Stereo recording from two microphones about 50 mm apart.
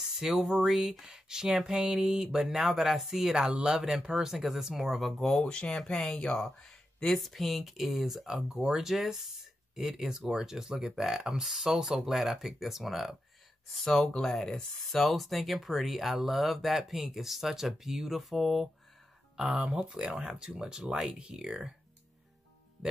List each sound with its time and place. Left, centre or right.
0.2 s speech: centre
5.4 s speech: centre
6.1 s speech: centre
7.2 s speech: centre
13.7 s speech: centre
19.3 s speech: right